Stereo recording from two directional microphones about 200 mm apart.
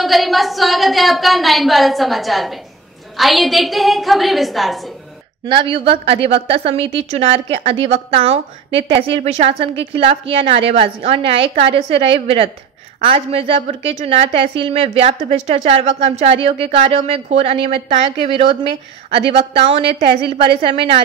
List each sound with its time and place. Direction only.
0.0 s a woman's voice: centre (ahead or behind)
5.4 s a woman's voice: 25° right (ahead or behind)
19.8 s a woman's voice: 55° right (ahead or behind)
20.6 s a woman's voice: 25° right (ahead or behind)